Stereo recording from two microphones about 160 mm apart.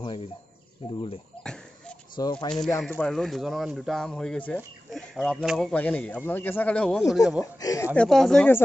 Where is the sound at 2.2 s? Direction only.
25° left (ahead or behind).